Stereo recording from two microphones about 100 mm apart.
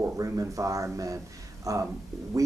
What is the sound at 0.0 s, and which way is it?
Speech, 35° right (ahead or behind).